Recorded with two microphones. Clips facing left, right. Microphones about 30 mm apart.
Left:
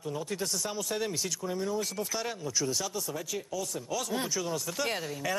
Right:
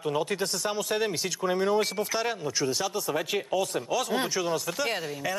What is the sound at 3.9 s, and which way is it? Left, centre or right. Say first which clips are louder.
Speech: right 3 dB; right.